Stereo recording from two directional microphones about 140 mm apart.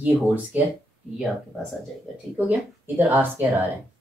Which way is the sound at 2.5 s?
15° right (ahead or behind).